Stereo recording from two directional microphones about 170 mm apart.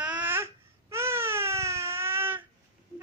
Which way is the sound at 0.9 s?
15° right (ahead or behind).